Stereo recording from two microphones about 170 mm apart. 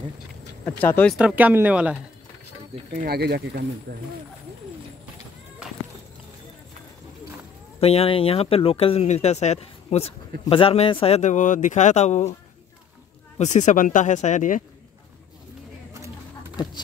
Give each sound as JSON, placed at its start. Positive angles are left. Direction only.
{"t": 0.7, "sound": "speech", "side_deg": 10}
{"t": 1.1, "sound": "speech", "side_deg": -10}
{"t": 2.7, "sound": "speech", "side_deg": -45}
{"t": 3.1, "sound": "speech", "side_deg": -70}
{"t": 3.9, "sound": "speech", "side_deg": -60}
{"t": 7.8, "sound": "speech", "side_deg": 35}
{"t": 13.4, "sound": "speech", "side_deg": 45}